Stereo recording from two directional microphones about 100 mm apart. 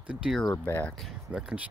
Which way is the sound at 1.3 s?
10° right (ahead or behind).